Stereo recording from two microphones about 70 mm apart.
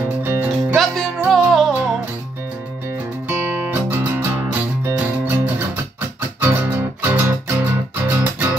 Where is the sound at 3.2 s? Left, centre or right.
Right.